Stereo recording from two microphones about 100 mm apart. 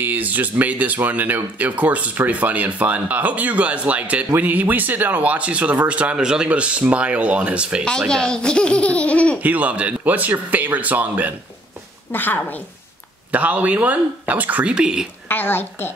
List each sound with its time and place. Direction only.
0.0 s speech: 15° right (ahead or behind)
8.1 s speech: 10° left (ahead or behind)
9.4 s speech: 15° right (ahead or behind)
12.1 s a woman's voice: 20° left (ahead or behind)
13.3 s speech: 15° right (ahead or behind)
15.2 s a woman's voice: 20° left (ahead or behind)